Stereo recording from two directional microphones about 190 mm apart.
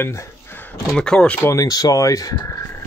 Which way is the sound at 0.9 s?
5° left (ahead or behind).